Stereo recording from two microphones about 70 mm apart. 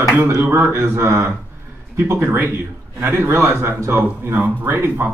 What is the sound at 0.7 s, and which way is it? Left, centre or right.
Speech, right.